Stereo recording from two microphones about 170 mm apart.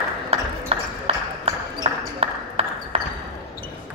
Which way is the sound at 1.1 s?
35° right (ahead or behind).